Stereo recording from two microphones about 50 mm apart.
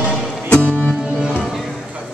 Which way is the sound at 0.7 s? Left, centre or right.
Left.